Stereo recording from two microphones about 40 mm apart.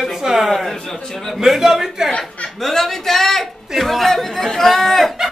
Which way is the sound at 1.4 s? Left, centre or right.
Centre.